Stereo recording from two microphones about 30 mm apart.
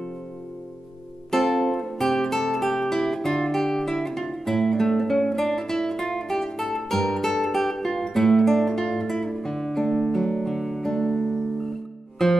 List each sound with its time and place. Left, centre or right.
1.3 s music: centre
10.2 s guitar: centre
10.5 s music: centre